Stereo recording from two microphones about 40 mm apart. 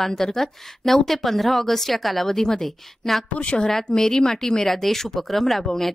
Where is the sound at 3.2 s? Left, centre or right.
Left.